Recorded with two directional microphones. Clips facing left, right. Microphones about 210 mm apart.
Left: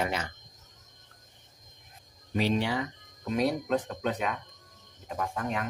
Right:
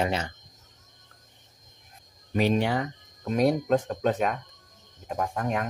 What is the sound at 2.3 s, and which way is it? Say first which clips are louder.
Speech: right 4 dB; 50° right (ahead or behind).